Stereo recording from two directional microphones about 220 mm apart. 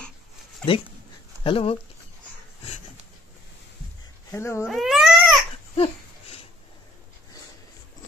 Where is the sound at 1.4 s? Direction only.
25° left (ahead or behind).